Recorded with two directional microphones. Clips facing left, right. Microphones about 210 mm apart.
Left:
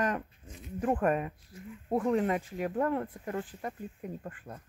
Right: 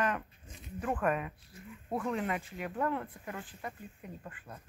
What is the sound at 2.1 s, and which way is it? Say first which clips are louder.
Speech: left 6 dB; 35° left (ahead or behind).